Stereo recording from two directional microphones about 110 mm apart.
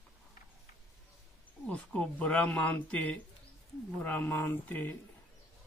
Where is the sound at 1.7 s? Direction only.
10° left (ahead or behind).